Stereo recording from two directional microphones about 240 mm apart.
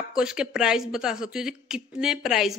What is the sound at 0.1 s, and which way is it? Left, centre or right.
Speech, centre.